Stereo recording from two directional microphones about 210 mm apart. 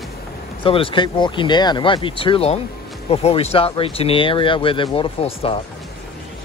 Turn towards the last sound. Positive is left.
turn(degrees=30)  # may be behind; listen again after turning